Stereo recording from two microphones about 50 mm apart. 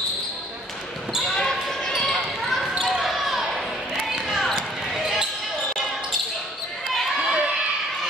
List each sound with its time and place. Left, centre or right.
1.2 s basketball bounce: centre
2.8 s basketball bounce: centre
7.2 s a sound: centre